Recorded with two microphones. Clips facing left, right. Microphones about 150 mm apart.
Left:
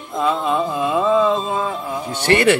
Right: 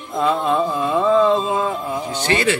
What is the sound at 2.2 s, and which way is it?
Speech, 60° left (ahead or behind).